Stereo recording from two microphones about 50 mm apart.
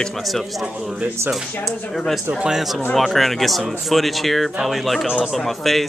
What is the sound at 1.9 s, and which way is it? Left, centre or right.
Speech, centre.